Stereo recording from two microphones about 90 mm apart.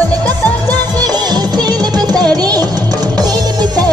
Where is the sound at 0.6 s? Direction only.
50° right (ahead or behind).